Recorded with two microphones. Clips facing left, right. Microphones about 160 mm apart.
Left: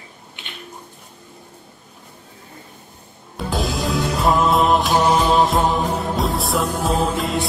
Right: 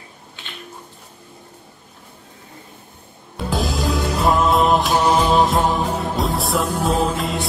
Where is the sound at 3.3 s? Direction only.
Centre (ahead or behind).